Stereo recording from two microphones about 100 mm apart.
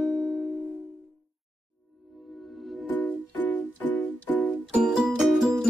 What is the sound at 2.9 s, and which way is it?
Music, 15° left (ahead or behind).